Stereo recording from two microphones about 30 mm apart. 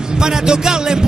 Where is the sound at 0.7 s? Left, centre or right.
Right.